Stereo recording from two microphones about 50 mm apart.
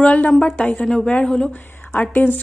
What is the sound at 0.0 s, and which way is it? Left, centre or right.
Speech, left.